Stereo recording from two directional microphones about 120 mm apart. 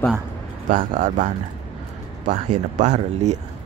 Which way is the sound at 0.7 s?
90° right.